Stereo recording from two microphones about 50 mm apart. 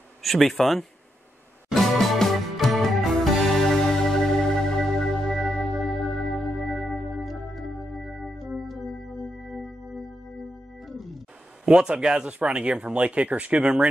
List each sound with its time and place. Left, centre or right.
0.2 s speech: centre
1.8 s music: centre
5.8 s organ: centre
11.6 s speech: centre